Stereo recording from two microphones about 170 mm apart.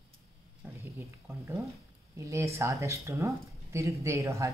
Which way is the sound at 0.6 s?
15° right (ahead or behind).